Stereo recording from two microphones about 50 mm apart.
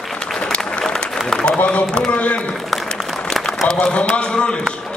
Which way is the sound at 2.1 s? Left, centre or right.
Left.